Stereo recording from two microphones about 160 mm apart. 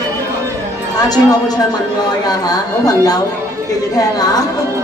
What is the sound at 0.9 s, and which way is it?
Speech, 25° left (ahead or behind).